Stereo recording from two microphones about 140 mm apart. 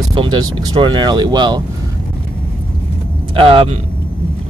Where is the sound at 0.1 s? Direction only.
35° right (ahead or behind).